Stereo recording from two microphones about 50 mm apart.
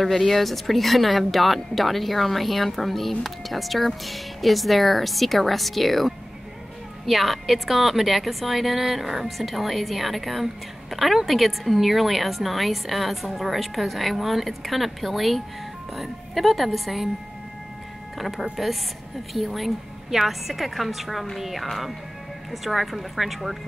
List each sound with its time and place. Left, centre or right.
0.0 s a woman's voice: centre
18.1 s a woman's voice: centre